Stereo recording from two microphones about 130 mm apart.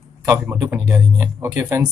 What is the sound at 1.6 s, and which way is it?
Speech, 10° right (ahead or behind).